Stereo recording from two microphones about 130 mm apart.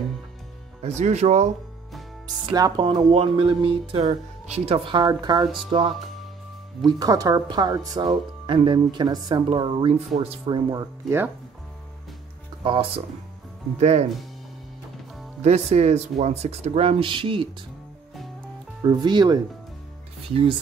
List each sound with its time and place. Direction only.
0.8 s speech: 60° right (ahead or behind)
2.5 s speech: 30° right (ahead or behind)
3.1 s speech: 45° right (ahead or behind)
6.9 s speech: 30° right (ahead or behind)
8.0 s speech: 40° right (ahead or behind)
10.7 s speech: 30° right (ahead or behind)
12.6 s speech: 40° right (ahead or behind)
13.7 s speech: 60° right (ahead or behind)
15.4 s speech: 55° right (ahead or behind); by 17.5 s 40° right (ahead or behind)
18.8 s speech: 35° right (ahead or behind)